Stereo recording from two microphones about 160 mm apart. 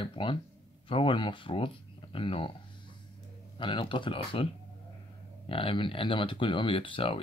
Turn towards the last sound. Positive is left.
turn(degrees=35)  # may be behind; listen again after turning